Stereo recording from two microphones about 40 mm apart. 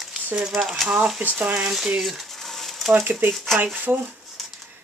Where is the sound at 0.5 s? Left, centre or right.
Centre.